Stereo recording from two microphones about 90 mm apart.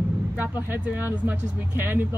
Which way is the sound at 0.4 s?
20° right (ahead or behind).